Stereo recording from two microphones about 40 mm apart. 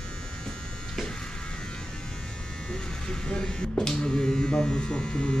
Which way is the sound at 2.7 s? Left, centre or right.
Centre.